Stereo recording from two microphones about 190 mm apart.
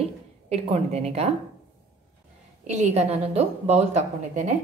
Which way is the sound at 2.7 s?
35° right (ahead or behind).